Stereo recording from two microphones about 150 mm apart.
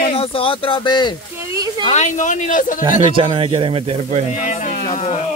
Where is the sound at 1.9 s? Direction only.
50° left (ahead or behind).